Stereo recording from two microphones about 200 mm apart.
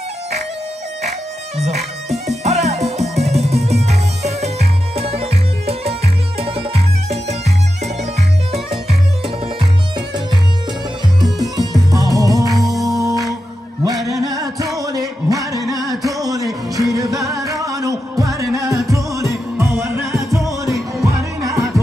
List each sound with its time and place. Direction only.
1.6 s speech: 30° right (ahead or behind)
2.2 s music: 35° right (ahead or behind)
9.6 s music: 25° right (ahead or behind)
11.5 s music: 20° right (ahead or behind)
12.6 s music: centre (ahead or behind)
12.9 s music: 15° right (ahead or behind)